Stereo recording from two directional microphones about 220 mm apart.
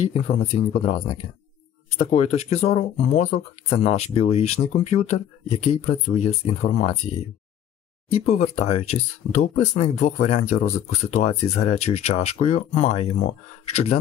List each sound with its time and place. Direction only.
0.0 s speech: 25° left (ahead or behind)
8.1 s speech: 30° left (ahead or behind)